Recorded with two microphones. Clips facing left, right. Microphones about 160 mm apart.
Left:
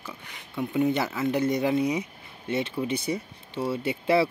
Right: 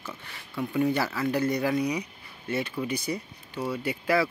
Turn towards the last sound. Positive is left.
turn(degrees=25)  # may be behind; listen again after turning